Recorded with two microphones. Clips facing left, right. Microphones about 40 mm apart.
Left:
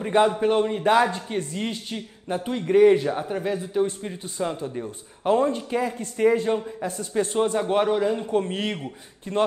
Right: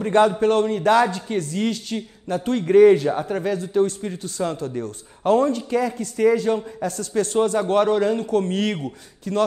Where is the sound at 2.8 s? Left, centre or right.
Centre.